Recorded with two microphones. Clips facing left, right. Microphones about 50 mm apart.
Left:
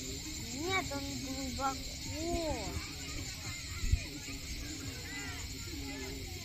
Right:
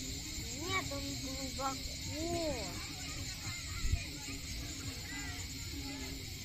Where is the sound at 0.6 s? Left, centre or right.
Centre.